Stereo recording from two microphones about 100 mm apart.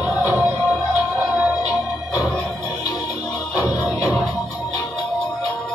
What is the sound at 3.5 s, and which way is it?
Music, 15° right (ahead or behind).